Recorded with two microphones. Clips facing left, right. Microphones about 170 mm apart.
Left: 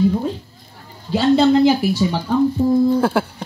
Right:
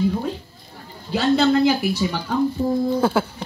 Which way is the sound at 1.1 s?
25° left (ahead or behind).